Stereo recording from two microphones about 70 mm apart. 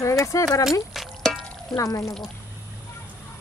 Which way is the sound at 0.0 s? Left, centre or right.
Left.